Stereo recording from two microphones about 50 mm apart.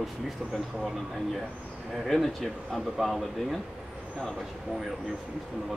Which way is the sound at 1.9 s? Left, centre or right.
Centre.